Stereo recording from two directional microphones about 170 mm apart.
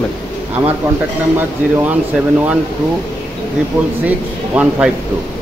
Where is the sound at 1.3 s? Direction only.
10° right (ahead or behind).